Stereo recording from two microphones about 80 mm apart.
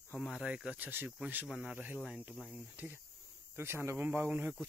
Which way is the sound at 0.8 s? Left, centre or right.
Right.